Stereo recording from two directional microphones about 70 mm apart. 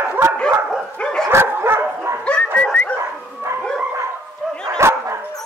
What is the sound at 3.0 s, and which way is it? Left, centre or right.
Dog, right.